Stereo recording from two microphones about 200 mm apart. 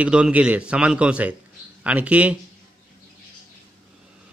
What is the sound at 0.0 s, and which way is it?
A man's voice, 5° right (ahead or behind).